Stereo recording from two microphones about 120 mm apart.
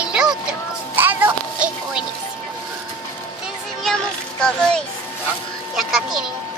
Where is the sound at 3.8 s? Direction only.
5° left (ahead or behind).